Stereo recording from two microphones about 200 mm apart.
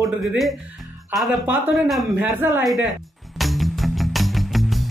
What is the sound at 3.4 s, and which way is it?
Music, centre (ahead or behind).